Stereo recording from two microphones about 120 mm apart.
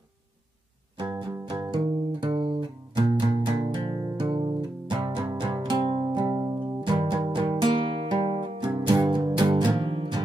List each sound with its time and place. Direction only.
0.9 s music: 35° right (ahead or behind)